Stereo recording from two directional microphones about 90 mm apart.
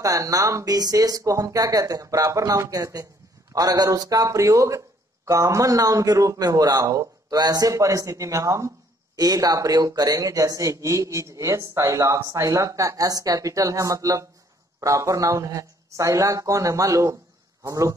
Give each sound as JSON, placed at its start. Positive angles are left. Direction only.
{"t": 0.0, "sound": "a man's voice", "side_deg": -40}